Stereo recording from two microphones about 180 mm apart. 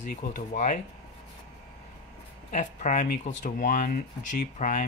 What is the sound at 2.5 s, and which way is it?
Speech, 45° left (ahead or behind).